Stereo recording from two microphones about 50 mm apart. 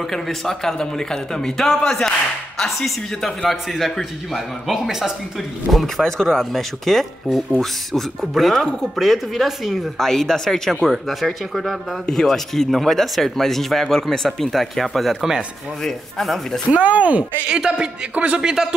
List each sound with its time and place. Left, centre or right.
0.1 s speech: centre
7.2 s a man's voice: centre
7.9 s speech: centre
10.0 s speech: centre
16.7 s speech: right
17.5 s a man's voice: centre
18.5 s a man's voice: centre